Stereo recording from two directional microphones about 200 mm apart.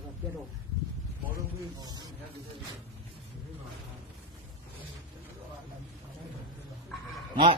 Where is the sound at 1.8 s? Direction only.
20° right (ahead or behind).